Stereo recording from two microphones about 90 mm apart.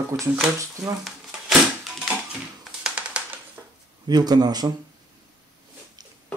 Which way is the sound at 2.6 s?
10° right (ahead or behind).